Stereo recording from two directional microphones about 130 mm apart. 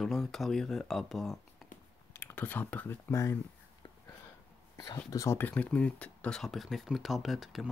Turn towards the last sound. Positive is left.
turn(degrees=0)  # may be behind; listen again after turning